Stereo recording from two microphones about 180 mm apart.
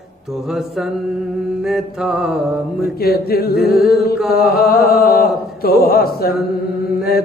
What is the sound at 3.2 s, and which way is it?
Speech, 55° left (ahead or behind).